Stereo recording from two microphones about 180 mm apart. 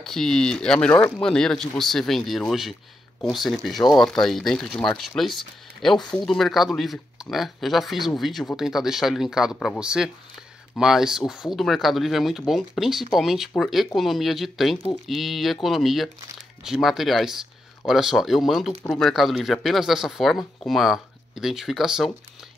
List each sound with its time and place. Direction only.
0.0 s speech: 5° left (ahead or behind)